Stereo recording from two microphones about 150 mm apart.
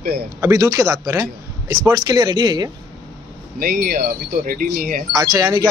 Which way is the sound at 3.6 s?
75° right (ahead or behind).